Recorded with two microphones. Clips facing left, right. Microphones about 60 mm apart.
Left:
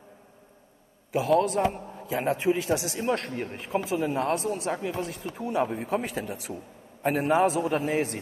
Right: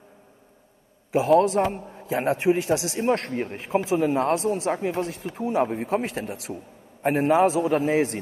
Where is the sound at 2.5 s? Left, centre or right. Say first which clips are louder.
Right 3 dB; centre.